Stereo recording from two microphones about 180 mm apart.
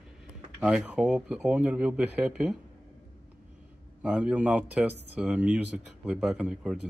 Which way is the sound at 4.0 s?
10° right (ahead or behind).